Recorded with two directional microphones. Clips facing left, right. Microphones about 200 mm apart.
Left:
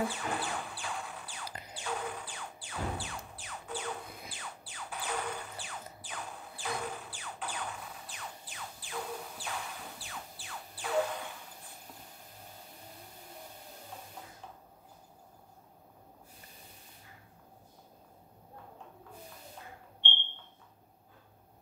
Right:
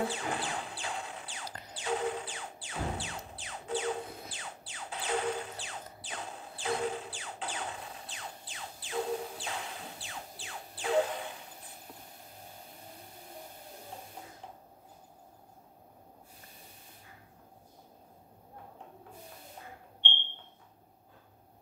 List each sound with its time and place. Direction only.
0.1 s music: 25° right (ahead or behind)